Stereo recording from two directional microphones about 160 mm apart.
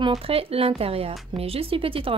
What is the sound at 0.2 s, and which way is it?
Speech, 35° right (ahead or behind).